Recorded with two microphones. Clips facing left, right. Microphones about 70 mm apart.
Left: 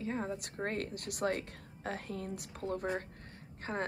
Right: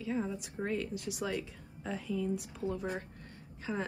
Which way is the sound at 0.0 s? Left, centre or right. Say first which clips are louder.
Right 2 dB; left.